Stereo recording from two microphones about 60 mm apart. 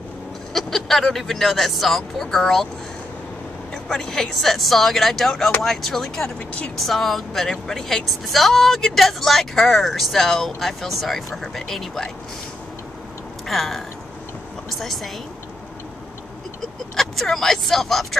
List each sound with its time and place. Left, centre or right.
0.5 s speech: centre
3.7 s speech: centre
6.2 s speech: left
6.9 s speech: centre
13.5 s speech: centre
16.9 s speech: centre